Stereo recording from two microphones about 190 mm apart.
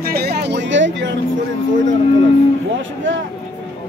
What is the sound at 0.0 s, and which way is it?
Music, 55° right (ahead or behind).